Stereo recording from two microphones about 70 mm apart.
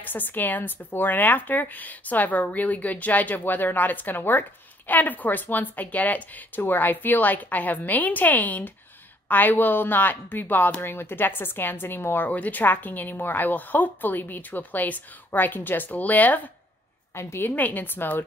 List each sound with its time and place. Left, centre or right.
0.0 s speech: left
17.1 s speech: left